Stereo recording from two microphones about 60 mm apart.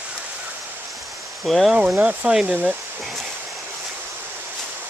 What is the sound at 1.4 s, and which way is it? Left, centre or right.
Speech, centre.